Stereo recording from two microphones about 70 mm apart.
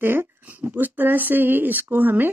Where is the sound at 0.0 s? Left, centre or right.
Right.